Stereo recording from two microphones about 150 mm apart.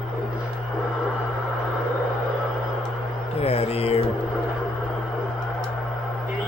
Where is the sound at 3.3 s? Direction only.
40° left (ahead or behind).